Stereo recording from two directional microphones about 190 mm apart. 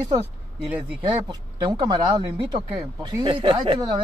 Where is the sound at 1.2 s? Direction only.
20° right (ahead or behind).